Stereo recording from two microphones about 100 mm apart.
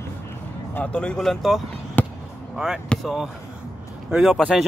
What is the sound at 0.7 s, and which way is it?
Speech, 10° left (ahead or behind).